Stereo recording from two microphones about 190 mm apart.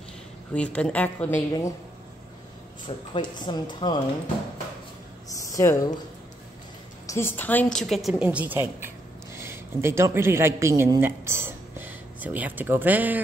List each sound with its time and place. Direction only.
0.5 s speech: 5° left (ahead or behind)
3.1 s speech: 25° left (ahead or behind)
5.5 s speech: 15° left (ahead or behind)
7.1 s speech: 10° left (ahead or behind)
7.8 s a woman's voice: centre (ahead or behind)